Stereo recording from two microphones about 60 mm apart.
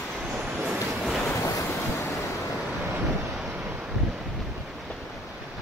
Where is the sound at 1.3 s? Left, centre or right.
Left.